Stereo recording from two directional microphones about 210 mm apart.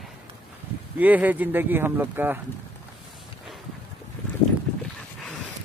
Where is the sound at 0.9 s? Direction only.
5° right (ahead or behind).